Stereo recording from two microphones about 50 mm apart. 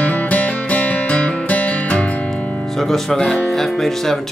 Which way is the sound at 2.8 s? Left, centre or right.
Centre.